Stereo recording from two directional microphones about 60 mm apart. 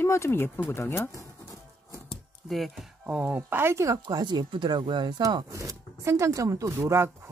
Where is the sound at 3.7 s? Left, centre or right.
Right.